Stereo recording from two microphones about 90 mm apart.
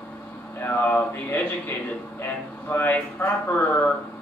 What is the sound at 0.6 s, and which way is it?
Speech, 25° left (ahead or behind).